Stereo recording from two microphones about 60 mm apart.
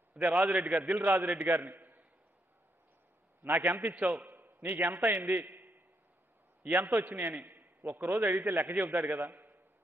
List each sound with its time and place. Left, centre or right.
0.1 s a man's voice: right
3.4 s a man's voice: right